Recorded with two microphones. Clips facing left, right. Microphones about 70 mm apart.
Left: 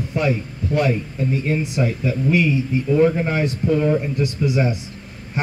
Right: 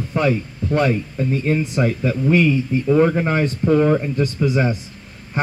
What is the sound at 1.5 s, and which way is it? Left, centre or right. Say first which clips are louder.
Speech: right 2 dB; right.